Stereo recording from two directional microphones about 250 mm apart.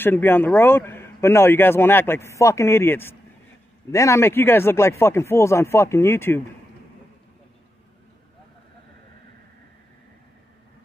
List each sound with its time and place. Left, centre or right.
0.0 s a man's voice: centre